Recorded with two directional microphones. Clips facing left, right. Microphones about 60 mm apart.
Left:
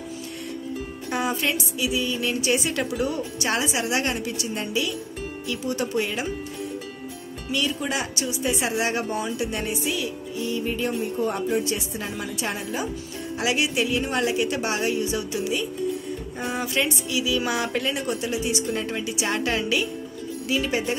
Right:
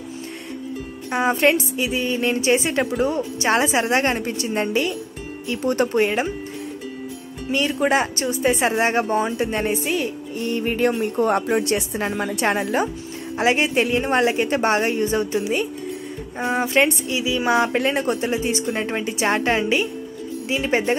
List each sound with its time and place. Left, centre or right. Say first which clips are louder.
1.1 s speech: right 7 dB; right
5.6 s music: right 8 dB; right
7.5 s speech: right 7 dB; right
9.1 s music: right 6 dB; right
13.4 s speech: right 5 dB; right
16.3 s speech: right 8 dB; right